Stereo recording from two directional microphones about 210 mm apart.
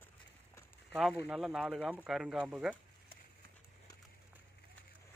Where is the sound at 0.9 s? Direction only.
Centre (ahead or behind).